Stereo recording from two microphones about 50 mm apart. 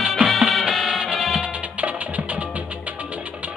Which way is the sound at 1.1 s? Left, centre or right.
Right.